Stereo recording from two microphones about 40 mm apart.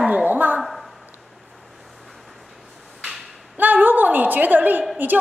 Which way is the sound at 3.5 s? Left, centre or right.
Right.